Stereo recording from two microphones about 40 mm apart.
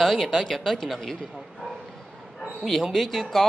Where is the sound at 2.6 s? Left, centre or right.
Centre.